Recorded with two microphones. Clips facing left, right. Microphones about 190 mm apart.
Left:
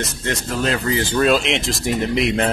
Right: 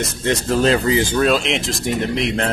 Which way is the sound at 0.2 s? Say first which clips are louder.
Right 7 dB; 25° right (ahead or behind).